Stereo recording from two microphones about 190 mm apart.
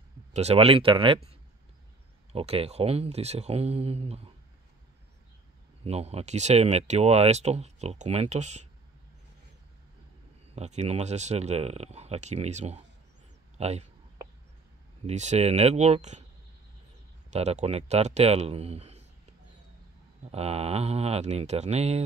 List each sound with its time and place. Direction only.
0.3 s speech: 35° right (ahead or behind)
2.3 s speech: 30° right (ahead or behind)
5.9 s speech: 35° right (ahead or behind)
10.5 s speech: 35° right (ahead or behind)
15.0 s speech: 35° right (ahead or behind)
17.3 s speech: 35° right (ahead or behind)
20.2 s speech: 30° right (ahead or behind)